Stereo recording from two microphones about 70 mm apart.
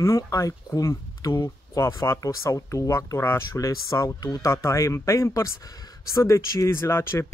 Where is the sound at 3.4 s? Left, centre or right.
Left.